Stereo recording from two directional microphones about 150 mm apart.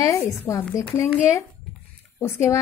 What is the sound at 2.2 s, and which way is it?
Speech, 15° left (ahead or behind).